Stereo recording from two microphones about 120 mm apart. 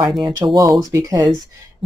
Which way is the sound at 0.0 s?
40° right (ahead or behind).